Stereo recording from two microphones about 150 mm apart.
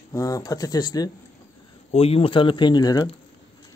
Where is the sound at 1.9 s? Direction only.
40° left (ahead or behind); by 3.1 s 25° left (ahead or behind).